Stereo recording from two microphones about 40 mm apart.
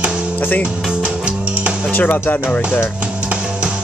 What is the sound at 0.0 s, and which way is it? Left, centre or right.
Music, right.